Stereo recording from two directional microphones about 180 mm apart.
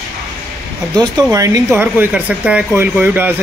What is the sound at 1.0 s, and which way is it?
Speech, 20° right (ahead or behind).